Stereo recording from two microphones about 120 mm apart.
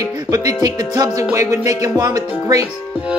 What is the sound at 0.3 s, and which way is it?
Music, 30° right (ahead or behind).